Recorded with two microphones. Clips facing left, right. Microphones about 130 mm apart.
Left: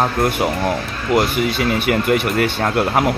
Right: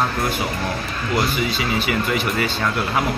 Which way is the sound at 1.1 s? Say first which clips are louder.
Left 5 dB; 55° left (ahead or behind).